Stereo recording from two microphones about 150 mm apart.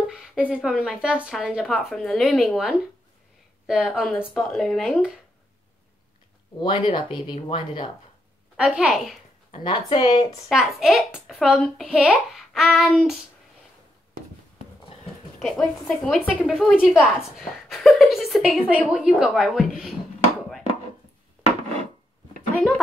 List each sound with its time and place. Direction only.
0.0 s speech: centre (ahead or behind)
6.6 s speech: 35° left (ahead or behind)
8.5 s speech: 5° right (ahead or behind)
9.5 s a woman's voice: 30° left (ahead or behind)
10.5 s speech: 5° right (ahead or behind)
15.3 s speech: 5° left (ahead or behind)